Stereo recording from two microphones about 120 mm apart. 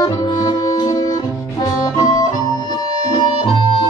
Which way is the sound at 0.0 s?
35° left (ahead or behind).